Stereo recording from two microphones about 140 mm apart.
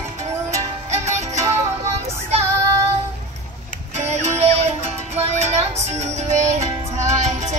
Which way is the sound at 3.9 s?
50° right (ahead or behind).